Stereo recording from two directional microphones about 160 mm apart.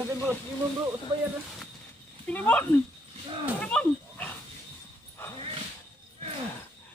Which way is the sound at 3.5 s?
10° left (ahead or behind).